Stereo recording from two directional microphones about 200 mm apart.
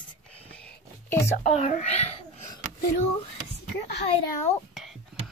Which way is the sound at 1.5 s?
35° left (ahead or behind).